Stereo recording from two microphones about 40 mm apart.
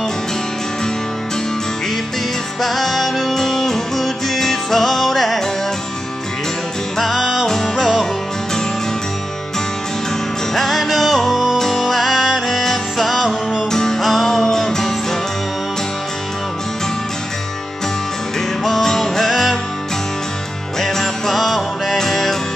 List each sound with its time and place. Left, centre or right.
2.6 s music: centre
7.0 s music: centre
7.4 s music: centre
10.5 s music: centre
13.7 s music: centre
18.6 s music: centre
20.8 s music: centre